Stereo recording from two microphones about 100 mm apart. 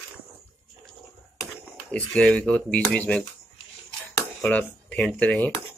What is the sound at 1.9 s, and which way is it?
Speech, 10° left (ahead or behind).